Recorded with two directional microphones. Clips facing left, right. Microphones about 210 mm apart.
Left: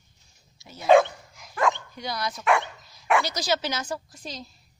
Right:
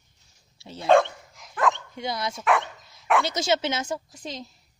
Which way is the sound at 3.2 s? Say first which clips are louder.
Right 3 dB; 25° right (ahead or behind).